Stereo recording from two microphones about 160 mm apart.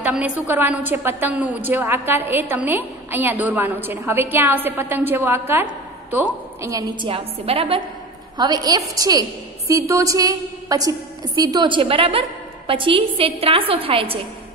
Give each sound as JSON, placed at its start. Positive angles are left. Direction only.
{"t": 0.0, "sound": "a sound", "side_deg": -10}
{"t": 0.5, "sound": "a woman's voice", "side_deg": -10}
{"t": 7.1, "sound": "a woman's voice", "side_deg": -35}
{"t": 8.4, "sound": "a woman's voice", "side_deg": -25}